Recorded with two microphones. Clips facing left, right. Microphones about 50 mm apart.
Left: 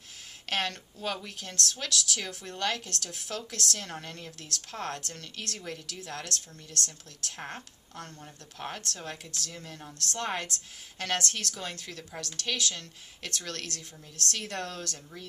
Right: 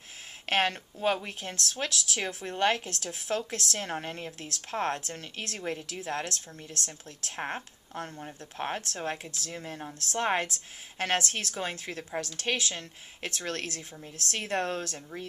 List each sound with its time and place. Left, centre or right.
0.5 s speech: right